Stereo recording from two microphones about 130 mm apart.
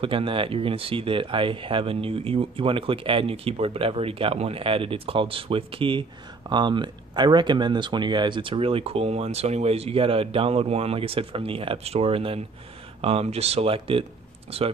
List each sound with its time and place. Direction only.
0.0 s speech: 40° right (ahead or behind)